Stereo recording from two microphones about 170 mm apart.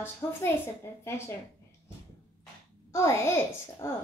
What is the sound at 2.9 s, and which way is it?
Speech, 15° left (ahead or behind).